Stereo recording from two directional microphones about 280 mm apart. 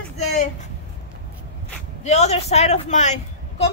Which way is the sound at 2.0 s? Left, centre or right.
Left.